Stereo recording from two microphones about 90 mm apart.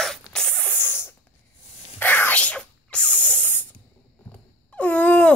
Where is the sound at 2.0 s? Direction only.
20° left (ahead or behind).